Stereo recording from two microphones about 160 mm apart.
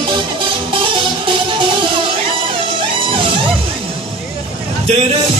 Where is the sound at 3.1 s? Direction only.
35° right (ahead or behind).